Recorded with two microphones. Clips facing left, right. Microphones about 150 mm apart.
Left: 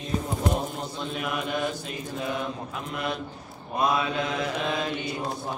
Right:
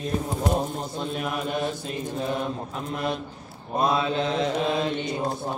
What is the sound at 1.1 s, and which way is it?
Mantra, 40° right (ahead or behind).